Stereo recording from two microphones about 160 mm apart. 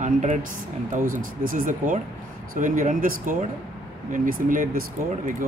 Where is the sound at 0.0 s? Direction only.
50° right (ahead or behind).